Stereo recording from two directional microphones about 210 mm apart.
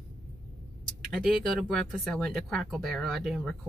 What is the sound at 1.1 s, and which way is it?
Speech, centre (ahead or behind).